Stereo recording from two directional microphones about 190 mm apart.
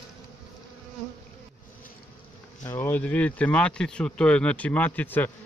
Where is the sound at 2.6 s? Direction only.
10° left (ahead or behind).